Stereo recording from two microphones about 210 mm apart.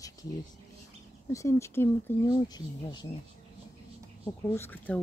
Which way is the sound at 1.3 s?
15° left (ahead or behind).